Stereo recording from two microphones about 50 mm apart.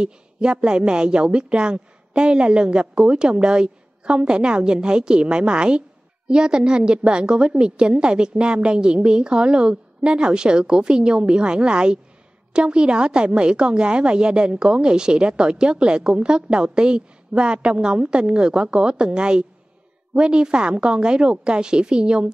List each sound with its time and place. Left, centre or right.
0.0 s a woman's voice: centre